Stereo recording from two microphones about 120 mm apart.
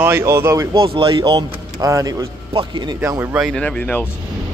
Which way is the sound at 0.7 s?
45° right (ahead or behind).